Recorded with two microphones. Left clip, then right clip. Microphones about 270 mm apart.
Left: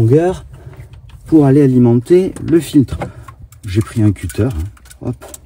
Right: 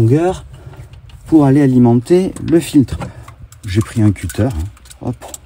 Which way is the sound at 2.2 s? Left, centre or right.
Centre.